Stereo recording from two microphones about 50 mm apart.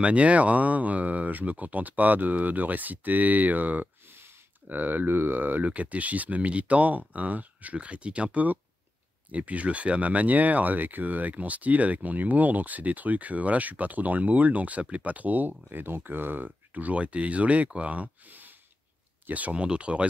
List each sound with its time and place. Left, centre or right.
0.0 s speech: right
4.1 s speech: right
5.7 s speech: right